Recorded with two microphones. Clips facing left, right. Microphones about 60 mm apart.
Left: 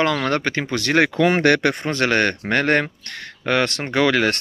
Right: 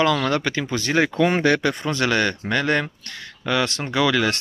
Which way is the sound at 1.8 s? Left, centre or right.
Left.